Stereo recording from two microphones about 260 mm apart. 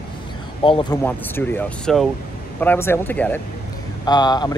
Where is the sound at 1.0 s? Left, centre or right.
Centre.